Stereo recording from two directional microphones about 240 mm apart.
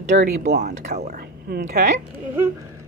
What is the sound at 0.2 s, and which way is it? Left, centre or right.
A woman's voice, right.